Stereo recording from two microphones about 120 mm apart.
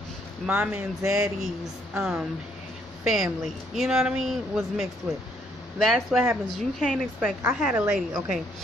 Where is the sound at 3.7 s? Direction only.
5° right (ahead or behind).